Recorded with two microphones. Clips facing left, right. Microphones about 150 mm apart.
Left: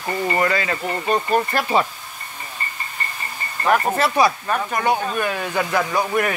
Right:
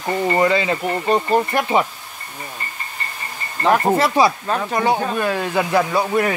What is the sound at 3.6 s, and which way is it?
Speech, 20° right (ahead or behind).